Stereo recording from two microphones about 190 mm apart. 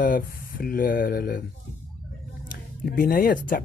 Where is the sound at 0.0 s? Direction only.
45° left (ahead or behind).